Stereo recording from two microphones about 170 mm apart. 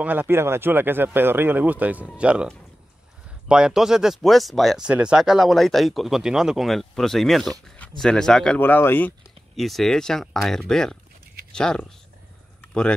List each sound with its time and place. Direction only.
0.0 s speech: 10° right (ahead or behind)
3.4 s speech: 5° right (ahead or behind)
7.6 s a sound: 5° left (ahead or behind)
8.0 s speech: 5° left (ahead or behind)
9.6 s speech: centre (ahead or behind)